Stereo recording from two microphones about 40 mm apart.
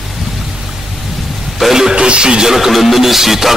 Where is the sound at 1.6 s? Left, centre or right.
Centre.